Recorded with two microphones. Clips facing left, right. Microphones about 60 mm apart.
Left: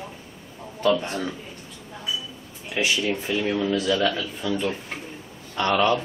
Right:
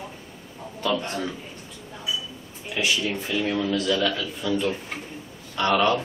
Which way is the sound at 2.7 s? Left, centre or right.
Left.